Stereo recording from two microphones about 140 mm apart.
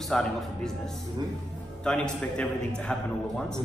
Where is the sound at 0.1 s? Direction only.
5° left (ahead or behind).